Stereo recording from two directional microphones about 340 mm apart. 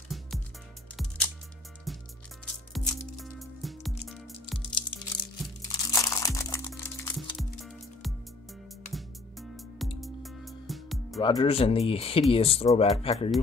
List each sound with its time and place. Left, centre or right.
0.1 s music: centre
1.9 s music: centre
5.7 s music: centre
11.2 s speech: centre